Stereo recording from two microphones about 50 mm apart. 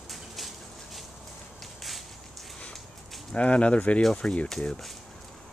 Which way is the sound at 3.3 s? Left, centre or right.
Left.